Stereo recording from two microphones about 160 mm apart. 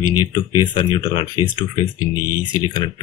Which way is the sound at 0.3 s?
30° left (ahead or behind).